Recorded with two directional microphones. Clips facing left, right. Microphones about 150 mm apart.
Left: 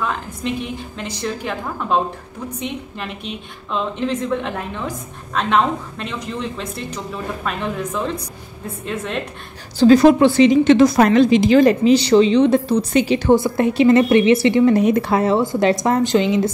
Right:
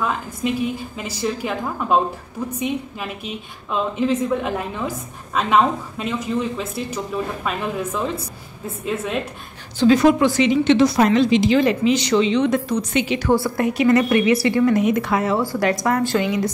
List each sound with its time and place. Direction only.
0.4 s a woman's voice: 5° right (ahead or behind)
3.7 s a woman's voice: 10° right (ahead or behind)
9.8 s a woman's voice: 35° left (ahead or behind)
13.3 s a woman's voice: 20° left (ahead or behind)